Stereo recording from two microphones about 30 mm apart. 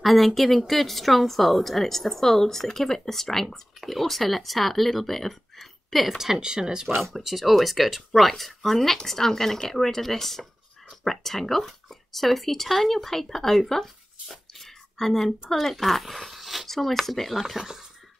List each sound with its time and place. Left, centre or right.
0.0 s a woman's voice: centre
6.0 s speech: centre
6.4 s speech: right
7.0 s a woman's voice: centre
16.6 s a sound: centre
17.1 s speech: centre